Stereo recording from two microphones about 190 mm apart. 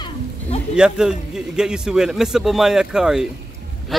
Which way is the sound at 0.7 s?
5° right (ahead or behind).